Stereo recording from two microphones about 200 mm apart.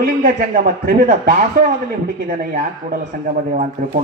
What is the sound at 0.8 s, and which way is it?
Speech, 45° right (ahead or behind).